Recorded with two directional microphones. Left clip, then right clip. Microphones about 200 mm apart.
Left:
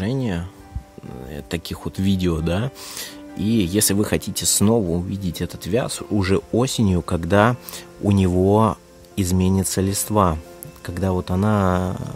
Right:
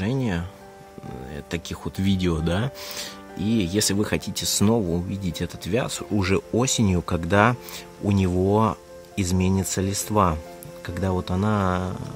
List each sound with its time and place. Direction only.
0.0 s music: 10° left (ahead or behind)
1.3 s speech: 15° left (ahead or behind)